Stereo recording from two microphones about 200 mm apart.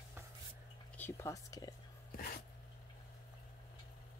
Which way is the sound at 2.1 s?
50° left (ahead or behind).